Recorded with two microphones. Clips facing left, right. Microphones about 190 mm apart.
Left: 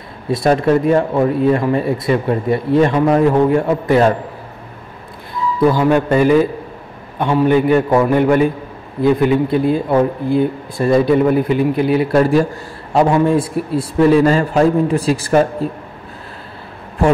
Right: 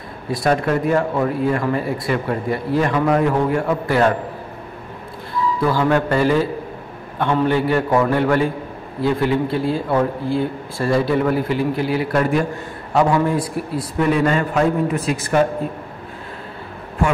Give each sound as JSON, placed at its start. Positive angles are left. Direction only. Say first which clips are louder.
{"t": 0.3, "sound": "a man's voice", "louder": "left 5 dB", "side_deg": 25}
{"t": 5.7, "sound": "a man's voice", "louder": "left 4 dB", "side_deg": 15}